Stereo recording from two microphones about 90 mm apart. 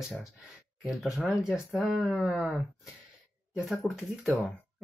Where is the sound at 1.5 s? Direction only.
5° right (ahead or behind).